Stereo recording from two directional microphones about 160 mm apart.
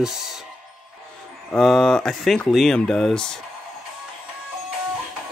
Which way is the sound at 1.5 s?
5° left (ahead or behind).